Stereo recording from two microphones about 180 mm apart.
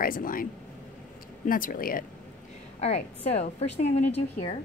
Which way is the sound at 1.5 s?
50° left (ahead or behind).